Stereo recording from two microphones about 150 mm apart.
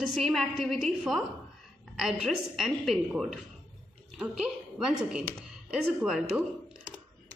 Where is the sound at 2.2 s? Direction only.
Centre (ahead or behind).